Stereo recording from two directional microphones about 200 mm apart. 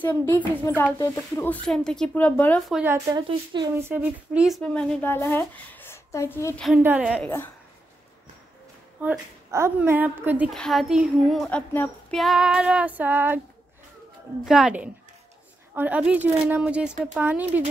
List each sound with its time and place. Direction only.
0.0 s speech: 10° left (ahead or behind)
2.7 s speech: 10° right (ahead or behind)
3.7 s speech: 10° right (ahead or behind)
6.8 s a woman's voice: 10° right (ahead or behind)
7.2 s speech: 10° left (ahead or behind)
9.0 s a woman's voice: 10° right (ahead or behind)
10.6 s child singing: centre (ahead or behind)
14.4 s child singing: 5° right (ahead or behind)
15.7 s a woman's voice: 10° right (ahead or behind)